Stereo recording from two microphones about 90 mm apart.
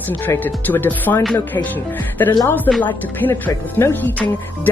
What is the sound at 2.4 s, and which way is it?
Speech, 20° left (ahead or behind).